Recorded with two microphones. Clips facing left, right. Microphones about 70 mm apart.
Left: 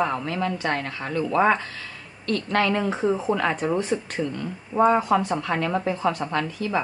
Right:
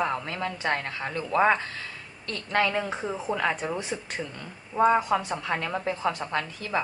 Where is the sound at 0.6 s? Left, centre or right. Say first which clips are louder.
Left 2 dB; centre.